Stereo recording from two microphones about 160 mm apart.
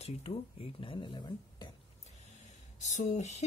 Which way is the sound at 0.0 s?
40° left (ahead or behind).